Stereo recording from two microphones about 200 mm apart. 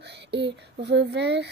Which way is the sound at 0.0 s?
55° right (ahead or behind).